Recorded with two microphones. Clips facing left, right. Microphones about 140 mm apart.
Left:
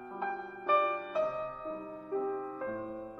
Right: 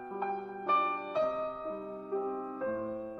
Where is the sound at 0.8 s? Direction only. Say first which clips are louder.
Left 2 dB; 25° right (ahead or behind).